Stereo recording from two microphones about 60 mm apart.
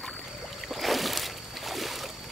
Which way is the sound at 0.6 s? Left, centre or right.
Centre.